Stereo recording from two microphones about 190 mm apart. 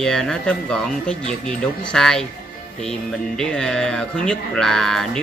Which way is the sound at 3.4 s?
5° left (ahead or behind).